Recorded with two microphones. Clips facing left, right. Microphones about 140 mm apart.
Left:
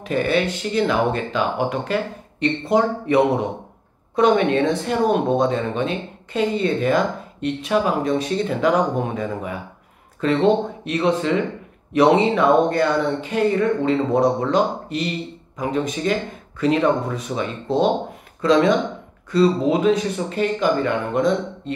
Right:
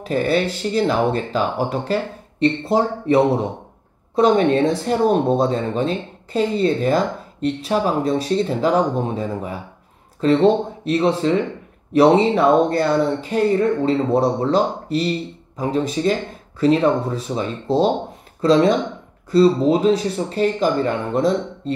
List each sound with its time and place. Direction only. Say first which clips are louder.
0.0 s speech: right 1 dB; 35° right (ahead or behind)